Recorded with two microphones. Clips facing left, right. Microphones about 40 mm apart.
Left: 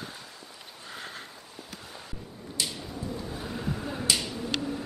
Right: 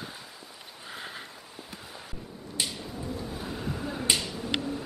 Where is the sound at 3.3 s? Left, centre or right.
Centre.